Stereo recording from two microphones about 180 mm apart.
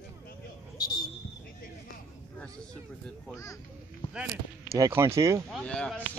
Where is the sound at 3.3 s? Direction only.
15° left (ahead or behind).